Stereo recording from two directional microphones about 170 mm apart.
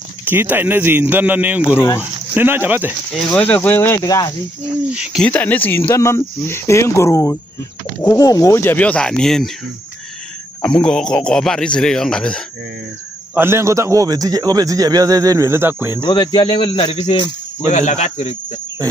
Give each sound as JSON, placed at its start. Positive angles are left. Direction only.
{"t": 0.2, "sound": "a man's voice", "side_deg": -10}
{"t": 3.3, "sound": "speech", "side_deg": 10}
{"t": 4.9, "sound": "a man's voice", "side_deg": -5}
{"t": 5.3, "sound": "speech", "side_deg": 10}
{"t": 10.6, "sound": "a man's voice", "side_deg": 5}
{"t": 13.3, "sound": "a man's voice", "side_deg": -15}
{"t": 16.0, "sound": "speech", "side_deg": 25}